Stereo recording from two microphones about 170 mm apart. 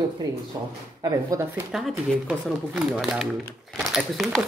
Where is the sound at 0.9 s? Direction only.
20° right (ahead or behind).